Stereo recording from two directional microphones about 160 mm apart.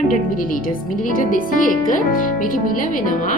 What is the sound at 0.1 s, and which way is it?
Speech, 60° left (ahead or behind).